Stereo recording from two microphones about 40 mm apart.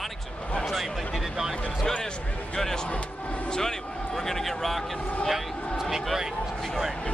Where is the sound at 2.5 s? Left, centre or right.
Centre.